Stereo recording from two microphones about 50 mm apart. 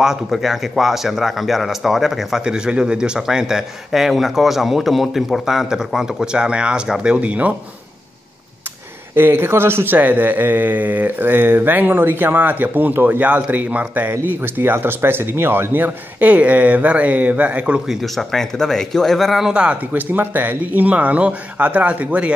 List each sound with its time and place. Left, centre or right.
0.0 s speech: centre
2.4 s a man's voice: centre
9.1 s a man's voice: right
9.9 s speech: right
14.2 s speech: right
17.8 s speech: centre
19.5 s speech: right
19.9 s speech: right